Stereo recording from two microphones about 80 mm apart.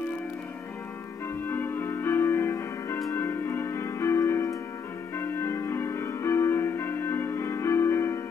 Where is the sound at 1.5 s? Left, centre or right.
Left.